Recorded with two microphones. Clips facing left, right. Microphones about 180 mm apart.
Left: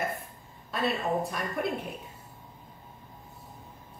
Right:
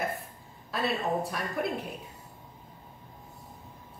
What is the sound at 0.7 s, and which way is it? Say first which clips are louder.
A woman's voice: even; centre (ahead or behind).